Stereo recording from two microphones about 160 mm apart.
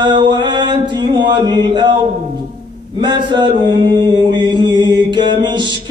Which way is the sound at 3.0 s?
30° right (ahead or behind).